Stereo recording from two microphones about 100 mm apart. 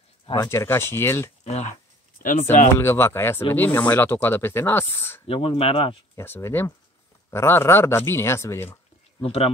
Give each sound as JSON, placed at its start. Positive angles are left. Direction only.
{"t": 0.5, "sound": "speech", "side_deg": 25}
{"t": 1.4, "sound": "speech", "side_deg": 90}
{"t": 2.4, "sound": "speech", "side_deg": 25}
{"t": 5.2, "sound": "speech", "side_deg": 70}
{"t": 6.1, "sound": "speech", "side_deg": 25}
{"t": 9.2, "sound": "speech", "side_deg": 80}